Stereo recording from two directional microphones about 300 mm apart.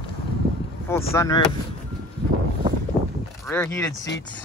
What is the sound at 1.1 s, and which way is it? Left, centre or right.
Speech, centre.